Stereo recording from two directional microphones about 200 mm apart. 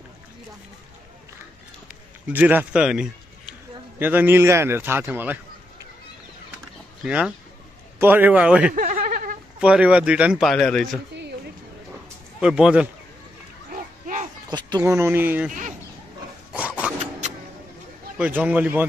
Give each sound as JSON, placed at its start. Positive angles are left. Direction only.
{"t": 2.3, "sound": "a man's voice", "side_deg": -10}
{"t": 7.1, "sound": "a man's voice", "side_deg": -5}
{"t": 8.7, "sound": "a sound", "side_deg": -40}
{"t": 9.6, "sound": "a man's voice", "side_deg": -5}
{"t": 12.4, "sound": "a man's voice", "side_deg": -5}
{"t": 13.7, "sound": "children playing", "side_deg": -40}
{"t": 14.7, "sound": "speech", "side_deg": -15}
{"t": 16.5, "sound": "zipper", "side_deg": -5}
{"t": 17.2, "sound": "vehicle", "side_deg": -35}
{"t": 18.1, "sound": "speech", "side_deg": -10}